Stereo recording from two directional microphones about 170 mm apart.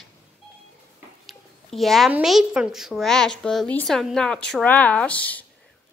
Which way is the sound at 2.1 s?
5° right (ahead or behind).